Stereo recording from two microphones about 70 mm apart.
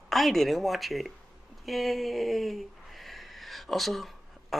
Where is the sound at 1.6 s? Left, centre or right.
Centre.